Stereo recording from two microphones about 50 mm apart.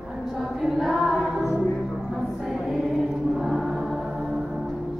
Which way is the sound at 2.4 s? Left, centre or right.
Centre.